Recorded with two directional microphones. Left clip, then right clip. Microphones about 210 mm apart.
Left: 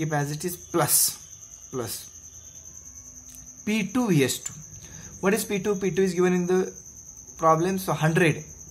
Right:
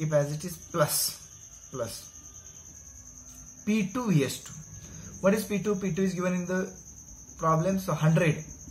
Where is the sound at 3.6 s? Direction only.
50° left (ahead or behind).